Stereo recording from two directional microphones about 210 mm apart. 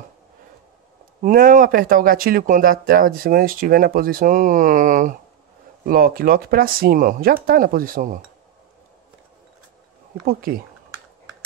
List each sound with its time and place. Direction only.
1.2 s speech: 40° right (ahead or behind)
10.2 s speech: 45° right (ahead or behind)